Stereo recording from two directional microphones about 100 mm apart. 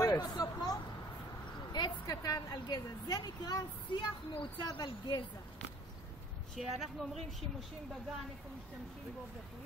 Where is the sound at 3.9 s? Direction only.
55° left (ahead or behind).